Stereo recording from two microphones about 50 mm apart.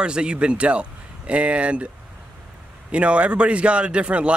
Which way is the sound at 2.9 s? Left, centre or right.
Right.